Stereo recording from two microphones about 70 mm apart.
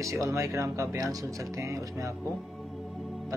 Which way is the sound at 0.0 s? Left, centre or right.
Right.